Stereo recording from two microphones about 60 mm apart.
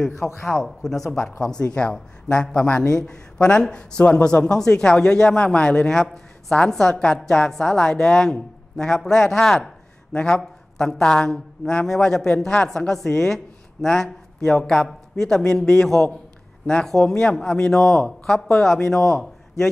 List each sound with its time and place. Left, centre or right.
0.1 s a man's voice: left
0.5 s speech: centre